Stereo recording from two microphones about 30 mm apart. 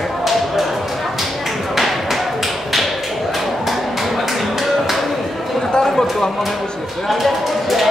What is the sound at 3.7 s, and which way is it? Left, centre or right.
Music, centre.